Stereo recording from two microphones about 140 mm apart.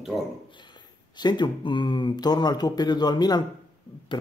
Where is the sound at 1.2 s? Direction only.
30° left (ahead or behind).